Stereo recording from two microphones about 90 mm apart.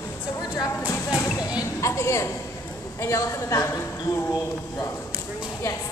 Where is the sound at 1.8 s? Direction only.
35° left (ahead or behind).